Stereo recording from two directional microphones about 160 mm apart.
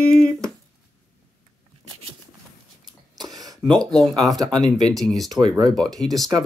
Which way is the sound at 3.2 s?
25° right (ahead or behind).